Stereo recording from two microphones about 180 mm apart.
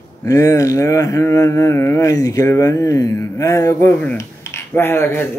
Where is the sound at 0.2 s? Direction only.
15° left (ahead or behind).